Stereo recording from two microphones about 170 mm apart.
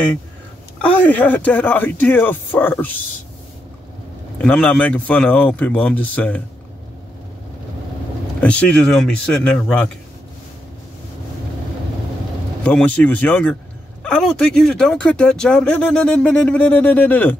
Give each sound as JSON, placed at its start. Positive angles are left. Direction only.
{"t": 0.7, "sound": "speech", "side_deg": 10}
{"t": 4.4, "sound": "speech", "side_deg": 10}
{"t": 8.4, "sound": "speech", "side_deg": 5}
{"t": 12.6, "sound": "speech", "side_deg": 10}